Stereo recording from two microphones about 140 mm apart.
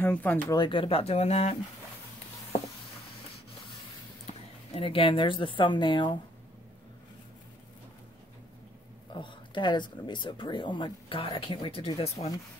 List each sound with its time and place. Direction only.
0.0 s speech: 10° left (ahead or behind)
0.5 s speech: 35° left (ahead or behind)
4.3 s speech: 40° left (ahead or behind)
9.1 s speech: 35° left (ahead or behind)